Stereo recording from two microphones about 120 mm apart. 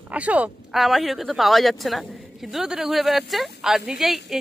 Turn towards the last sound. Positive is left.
turn(degrees=-5)  # may be behind; listen again after turning